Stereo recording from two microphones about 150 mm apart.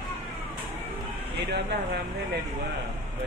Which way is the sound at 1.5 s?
90° right.